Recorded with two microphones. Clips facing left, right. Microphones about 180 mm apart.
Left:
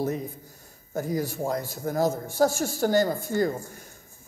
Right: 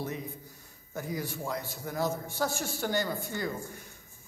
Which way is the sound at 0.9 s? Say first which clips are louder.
Left 7 dB; 45° left (ahead or behind).